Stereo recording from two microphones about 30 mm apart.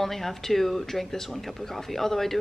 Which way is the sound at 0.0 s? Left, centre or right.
Centre.